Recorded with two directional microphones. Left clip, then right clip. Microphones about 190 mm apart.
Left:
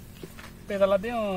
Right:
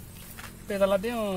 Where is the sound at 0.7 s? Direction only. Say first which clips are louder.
Left 1 dB; 10° left (ahead or behind).